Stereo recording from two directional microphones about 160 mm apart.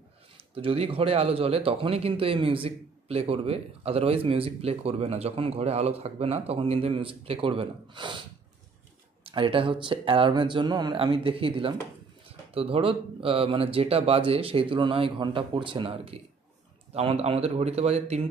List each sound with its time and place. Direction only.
0.6 s speech: 35° right (ahead or behind)
9.2 s speech: 35° right (ahead or behind)